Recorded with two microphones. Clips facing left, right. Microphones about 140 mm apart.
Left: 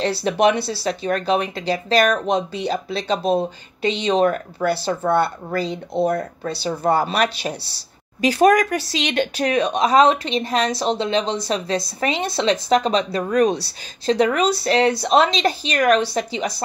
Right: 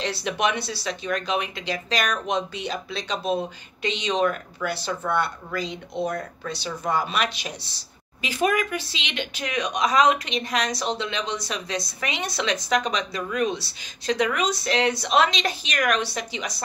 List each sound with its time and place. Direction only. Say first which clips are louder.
0.0 s speech: left 8 dB; 35° left (ahead or behind)